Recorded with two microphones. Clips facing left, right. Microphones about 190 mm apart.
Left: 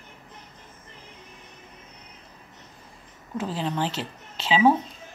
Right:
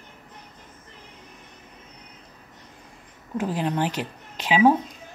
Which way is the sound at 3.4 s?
15° right (ahead or behind).